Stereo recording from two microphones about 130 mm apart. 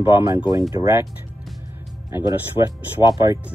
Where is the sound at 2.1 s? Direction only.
25° right (ahead or behind).